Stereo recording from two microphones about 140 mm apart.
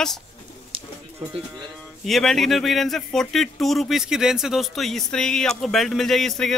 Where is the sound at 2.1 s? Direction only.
Centre (ahead or behind).